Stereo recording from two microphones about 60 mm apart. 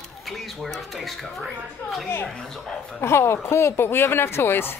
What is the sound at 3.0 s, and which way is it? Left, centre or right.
Speech, left.